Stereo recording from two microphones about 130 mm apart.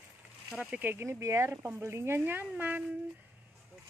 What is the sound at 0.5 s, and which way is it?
Speech, 5° right (ahead or behind).